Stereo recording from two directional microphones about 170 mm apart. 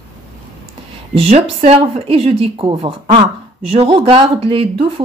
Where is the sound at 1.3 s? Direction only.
35° right (ahead or behind).